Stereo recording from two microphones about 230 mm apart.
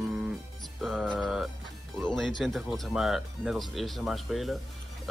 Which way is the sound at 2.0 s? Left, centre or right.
Centre.